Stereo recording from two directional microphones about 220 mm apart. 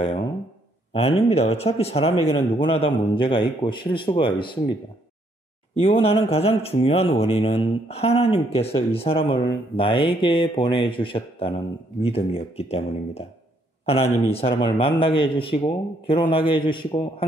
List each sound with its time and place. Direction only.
0.9 s speech: 25° left (ahead or behind)
5.8 s speech: 25° left (ahead or behind)
14.3 s speech: 25° left (ahead or behind)